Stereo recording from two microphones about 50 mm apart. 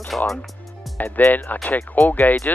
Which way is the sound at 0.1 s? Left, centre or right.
Centre.